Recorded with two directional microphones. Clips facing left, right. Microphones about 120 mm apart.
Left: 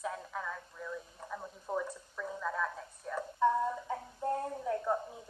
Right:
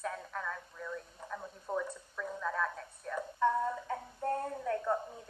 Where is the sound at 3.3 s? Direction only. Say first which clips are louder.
Left 1 dB; 15° left (ahead or behind).